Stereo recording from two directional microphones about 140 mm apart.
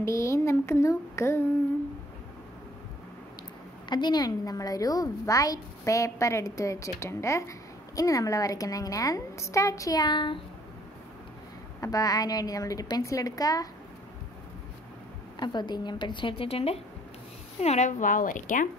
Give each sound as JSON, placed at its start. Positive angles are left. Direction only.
{"t": 0.0, "sound": "a woman's voice", "side_deg": 20}
{"t": 3.9, "sound": "a woman's voice", "side_deg": 30}
{"t": 11.8, "sound": "a woman's voice", "side_deg": 25}
{"t": 15.3, "sound": "a woman's voice", "side_deg": 30}